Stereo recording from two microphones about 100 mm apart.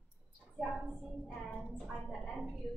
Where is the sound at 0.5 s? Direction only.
Centre (ahead or behind).